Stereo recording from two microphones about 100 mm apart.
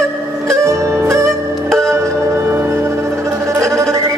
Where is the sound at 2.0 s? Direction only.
30° right (ahead or behind).